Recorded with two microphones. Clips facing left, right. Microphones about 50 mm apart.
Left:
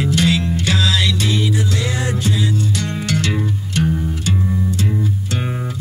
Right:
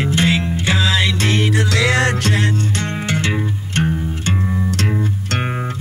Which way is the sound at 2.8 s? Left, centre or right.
Right.